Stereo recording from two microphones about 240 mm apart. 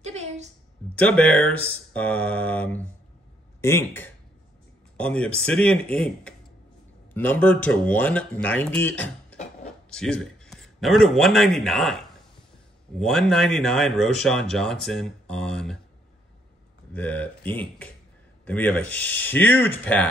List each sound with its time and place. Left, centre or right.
0.0 s a sound: right
0.9 s speech: centre
13.0 s speech: centre
16.9 s speech: centre